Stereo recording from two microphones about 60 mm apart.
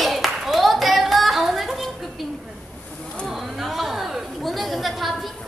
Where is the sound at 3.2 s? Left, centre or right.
Centre.